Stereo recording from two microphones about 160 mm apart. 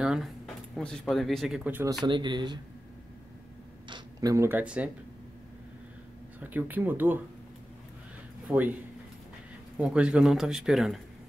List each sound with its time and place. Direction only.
0.0 s a man's voice: 5° right (ahead or behind)
2.0 s speech: 30° right (ahead or behind)
3.9 s speech: 20° right (ahead or behind)
6.4 s speech: 10° right (ahead or behind)
8.5 s speech: 10° right (ahead or behind)
9.8 s a man's voice: 5° right (ahead or behind)